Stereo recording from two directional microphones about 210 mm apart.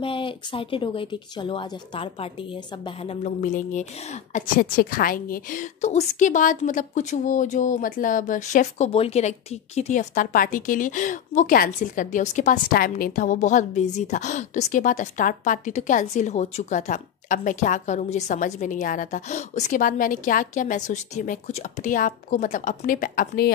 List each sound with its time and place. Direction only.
0.0 s a woman's voice: 25° left (ahead or behind); by 23.5 s 45° left (ahead or behind)